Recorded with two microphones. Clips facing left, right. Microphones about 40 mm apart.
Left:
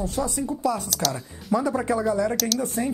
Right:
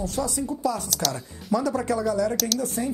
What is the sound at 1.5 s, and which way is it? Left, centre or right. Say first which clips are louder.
Speech: left 1 dB; centre.